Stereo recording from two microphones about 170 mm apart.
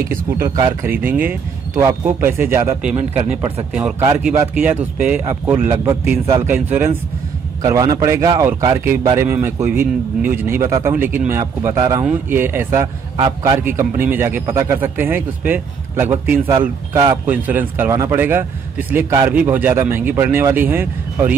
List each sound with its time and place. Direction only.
0.4 s speech: 15° right (ahead or behind)
4.2 s speech: 10° right (ahead or behind)